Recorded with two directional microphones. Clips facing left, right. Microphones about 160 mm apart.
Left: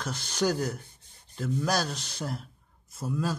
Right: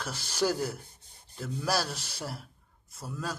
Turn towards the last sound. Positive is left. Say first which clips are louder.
# left 7 dB
turn(degrees=0)  # may be behind; listen again after turning